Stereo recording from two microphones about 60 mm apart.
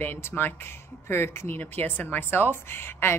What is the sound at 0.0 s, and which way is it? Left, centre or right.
A woman's voice, left.